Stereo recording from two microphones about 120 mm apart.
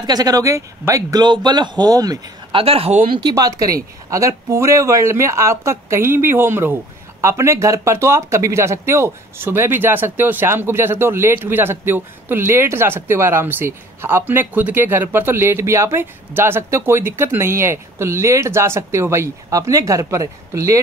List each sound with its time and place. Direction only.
0.0 s speech: 35° right (ahead or behind)
2.5 s speech: 55° right (ahead or behind)
3.1 s speech: 40° right (ahead or behind)